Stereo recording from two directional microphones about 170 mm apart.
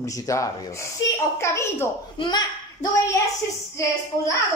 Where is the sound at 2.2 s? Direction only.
25° left (ahead or behind).